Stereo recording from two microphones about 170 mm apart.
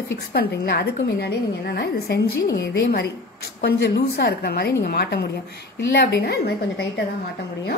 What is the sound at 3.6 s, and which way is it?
A woman's voice, 85° left.